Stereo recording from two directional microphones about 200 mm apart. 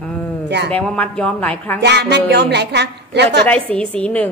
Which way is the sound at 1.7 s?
55° right (ahead or behind).